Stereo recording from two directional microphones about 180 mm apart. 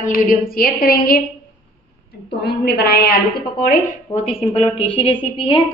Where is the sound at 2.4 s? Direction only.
60° left (ahead or behind).